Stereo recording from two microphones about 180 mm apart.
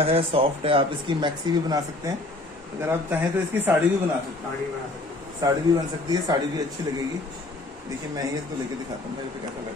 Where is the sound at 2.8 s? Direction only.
10° right (ahead or behind).